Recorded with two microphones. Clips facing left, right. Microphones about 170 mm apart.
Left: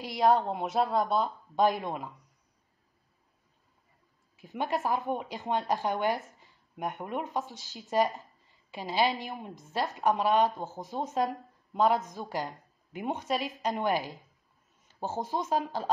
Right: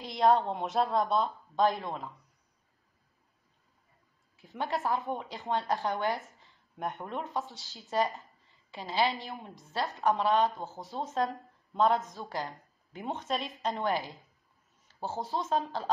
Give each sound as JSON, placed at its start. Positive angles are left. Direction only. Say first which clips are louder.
{"t": 0.0, "sound": "a woman's voice", "louder": "even", "side_deg": 0}
{"t": 1.5, "sound": "a woman's voice", "louder": "left 2 dB", "side_deg": 15}
{"t": 4.4, "sound": "a woman's voice", "louder": "left 2 dB", "side_deg": 15}
{"t": 13.2, "sound": "a woman's voice", "louder": "left 1 dB", "side_deg": 0}
{"t": 13.6, "sound": "a woman's voice", "louder": "left 1 dB", "side_deg": 15}